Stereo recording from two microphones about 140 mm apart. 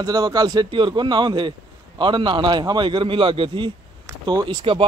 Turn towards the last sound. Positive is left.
turn(degrees=-35)  # may be behind; listen again after turning